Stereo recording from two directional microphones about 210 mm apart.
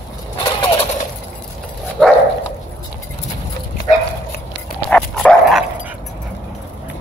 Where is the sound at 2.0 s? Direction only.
5° left (ahead or behind).